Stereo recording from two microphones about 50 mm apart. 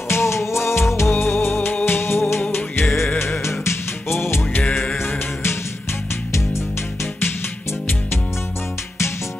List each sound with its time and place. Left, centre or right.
0.1 s music: left
1.1 s music: left
3.4 s music: left